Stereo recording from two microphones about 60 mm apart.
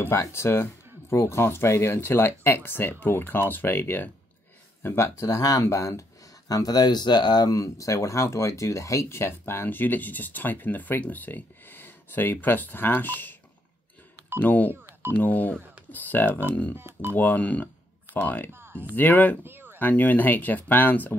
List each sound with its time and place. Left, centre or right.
0.0 s speech: left
4.8 s speech: left
5.7 s speech: left
6.5 s speech: left
7.4 s speech: left
14.4 s speech: left
14.7 s music: right
15.1 s speech: left
16.7 s speech: right
17.1 s speech: left
18.5 s speech: right
18.9 s speech: left
19.4 s a sound: right
19.8 s speech: left